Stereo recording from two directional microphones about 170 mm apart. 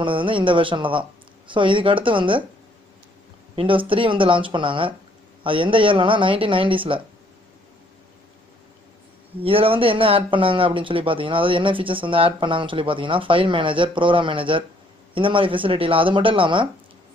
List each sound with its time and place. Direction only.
0.0 s speech: 30° right (ahead or behind)
3.5 s speech: 30° right (ahead or behind)
9.4 s speech: 35° right (ahead or behind)